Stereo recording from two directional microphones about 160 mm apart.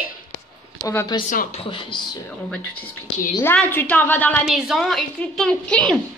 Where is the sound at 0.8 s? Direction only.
20° left (ahead or behind).